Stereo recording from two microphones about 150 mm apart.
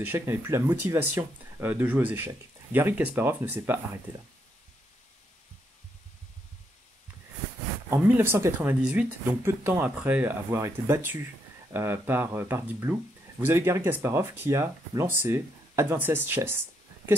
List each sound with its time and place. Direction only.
0.0 s speech: 15° right (ahead or behind)
7.9 s speech: 15° right (ahead or behind)